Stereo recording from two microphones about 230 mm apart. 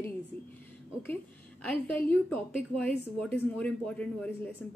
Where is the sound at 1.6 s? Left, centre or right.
Centre.